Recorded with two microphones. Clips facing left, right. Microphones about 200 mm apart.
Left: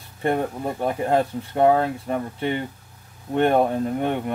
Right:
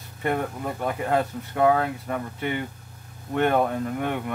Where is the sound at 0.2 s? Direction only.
30° left (ahead or behind).